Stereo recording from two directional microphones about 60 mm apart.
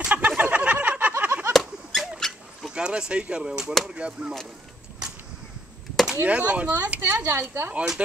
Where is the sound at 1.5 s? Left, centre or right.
Centre.